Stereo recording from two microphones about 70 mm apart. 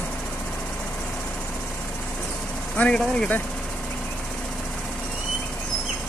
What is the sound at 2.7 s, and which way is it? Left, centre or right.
Speech, centre.